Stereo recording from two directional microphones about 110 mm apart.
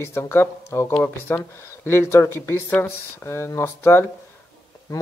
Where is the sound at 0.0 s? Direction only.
25° left (ahead or behind).